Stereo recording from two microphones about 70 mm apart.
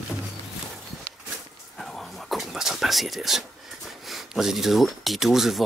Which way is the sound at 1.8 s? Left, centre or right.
Centre.